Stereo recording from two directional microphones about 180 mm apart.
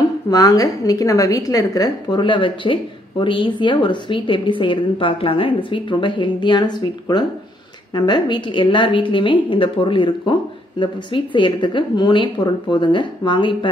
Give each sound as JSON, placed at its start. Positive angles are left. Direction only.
{"t": 0.3, "sound": "a woman's voice", "side_deg": 20}